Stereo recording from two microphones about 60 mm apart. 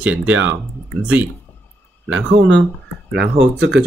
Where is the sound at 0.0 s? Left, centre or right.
Right.